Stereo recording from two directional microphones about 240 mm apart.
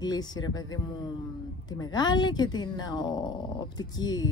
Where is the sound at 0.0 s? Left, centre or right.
Centre.